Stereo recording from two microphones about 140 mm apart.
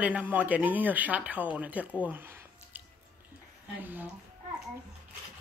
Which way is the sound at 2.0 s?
15° right (ahead or behind).